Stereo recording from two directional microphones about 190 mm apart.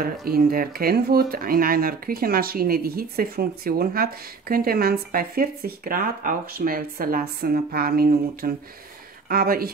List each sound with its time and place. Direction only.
0.0 s speech: 50° right (ahead or behind)